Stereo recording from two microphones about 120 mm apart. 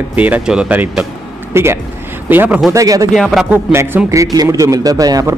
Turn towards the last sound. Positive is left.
turn(degrees=-30)  # may be behind; listen again after turning